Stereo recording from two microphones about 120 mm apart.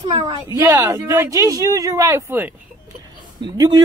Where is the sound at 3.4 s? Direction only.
35° right (ahead or behind).